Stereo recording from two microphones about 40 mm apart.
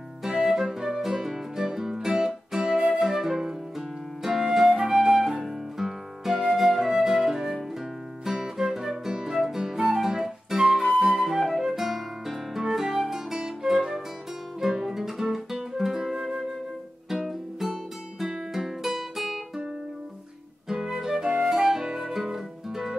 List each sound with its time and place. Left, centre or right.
0.5 s music: centre
2.7 s flute: right
3.0 s flute: centre
5.4 s music: centre
9.9 s flute: centre
10.9 s flute: right
11.1 s music: centre
14.8 s guitar: centre
15.8 s music: centre
18.5 s guitar: centre
20.6 s music: centre